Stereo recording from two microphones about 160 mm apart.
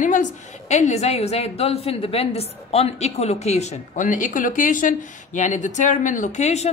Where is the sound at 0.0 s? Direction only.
50° left (ahead or behind).